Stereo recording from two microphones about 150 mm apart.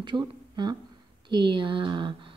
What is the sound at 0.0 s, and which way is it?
A woman's voice, 30° right (ahead or behind).